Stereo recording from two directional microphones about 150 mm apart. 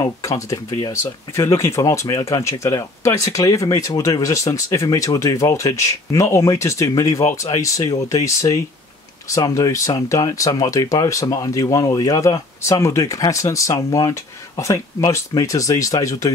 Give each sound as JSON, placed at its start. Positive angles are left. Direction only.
{"t": 0.0, "sound": "speech", "side_deg": 20}